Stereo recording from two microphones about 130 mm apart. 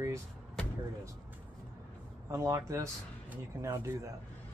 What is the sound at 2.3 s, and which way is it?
Speech, 25° right (ahead or behind).